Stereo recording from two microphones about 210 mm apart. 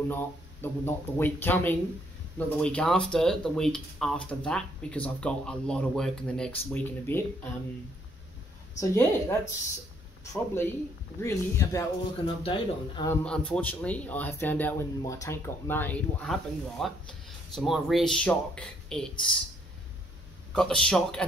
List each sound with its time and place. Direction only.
0.1 s speech: 10° left (ahead or behind)
8.7 s speech: 15° left (ahead or behind)
13.1 s speech: 5° left (ahead or behind)
20.5 s speech: 5° left (ahead or behind)